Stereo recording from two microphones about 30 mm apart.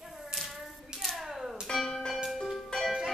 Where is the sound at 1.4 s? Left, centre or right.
Centre.